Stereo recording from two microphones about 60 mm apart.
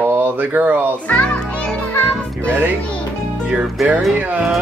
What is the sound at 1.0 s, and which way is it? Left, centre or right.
Speech, left.